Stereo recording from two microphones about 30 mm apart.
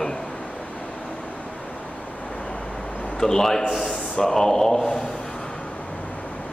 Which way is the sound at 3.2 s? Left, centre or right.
Centre.